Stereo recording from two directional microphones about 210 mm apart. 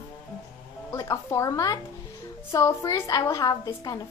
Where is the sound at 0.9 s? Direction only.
15° left (ahead or behind).